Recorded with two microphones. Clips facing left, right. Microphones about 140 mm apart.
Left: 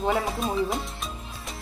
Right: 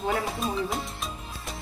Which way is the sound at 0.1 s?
Centre (ahead or behind).